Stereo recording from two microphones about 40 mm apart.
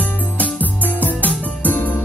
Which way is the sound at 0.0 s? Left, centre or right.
Left.